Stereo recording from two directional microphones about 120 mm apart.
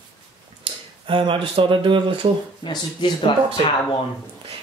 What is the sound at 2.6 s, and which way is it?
Speech, 40° left (ahead or behind).